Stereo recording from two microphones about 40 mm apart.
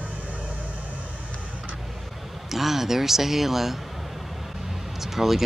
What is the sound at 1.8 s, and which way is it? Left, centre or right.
Speech, centre.